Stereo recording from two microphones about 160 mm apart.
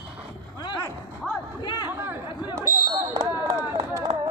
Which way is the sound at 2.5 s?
25° right (ahead or behind).